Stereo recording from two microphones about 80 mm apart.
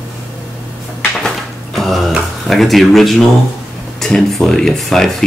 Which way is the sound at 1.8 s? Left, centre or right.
Centre.